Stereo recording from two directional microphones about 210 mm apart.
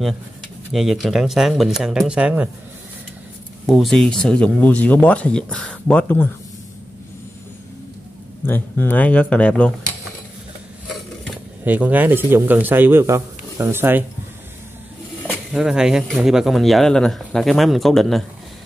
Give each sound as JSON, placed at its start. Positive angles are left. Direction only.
{"t": 0.7, "sound": "speech", "side_deg": 0}
{"t": 3.6, "sound": "speech", "side_deg": 0}
{"t": 8.5, "sound": "speech", "side_deg": 10}
{"t": 11.2, "sound": "speech", "side_deg": -5}
{"t": 15.5, "sound": "speech", "side_deg": -5}